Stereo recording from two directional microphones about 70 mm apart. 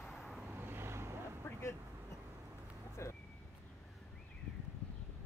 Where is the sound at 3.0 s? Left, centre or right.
Left.